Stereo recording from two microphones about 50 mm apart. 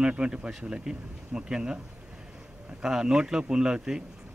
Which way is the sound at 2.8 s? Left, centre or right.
Centre.